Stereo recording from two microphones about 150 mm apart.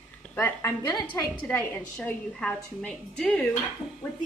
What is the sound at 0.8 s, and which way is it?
Speech, 25° left (ahead or behind).